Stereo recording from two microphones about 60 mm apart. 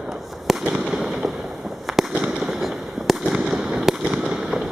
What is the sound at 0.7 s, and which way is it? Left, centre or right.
Fireworks, centre.